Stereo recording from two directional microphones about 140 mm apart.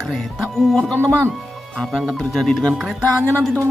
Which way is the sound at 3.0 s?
10° left (ahead or behind).